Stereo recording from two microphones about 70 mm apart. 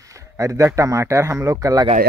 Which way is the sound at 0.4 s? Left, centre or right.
Right.